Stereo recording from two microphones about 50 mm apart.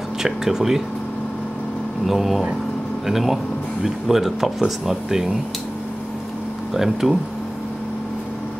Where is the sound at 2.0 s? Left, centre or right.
Centre.